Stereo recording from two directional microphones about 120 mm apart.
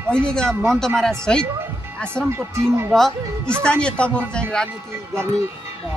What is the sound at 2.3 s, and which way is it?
Speech, 20° right (ahead or behind).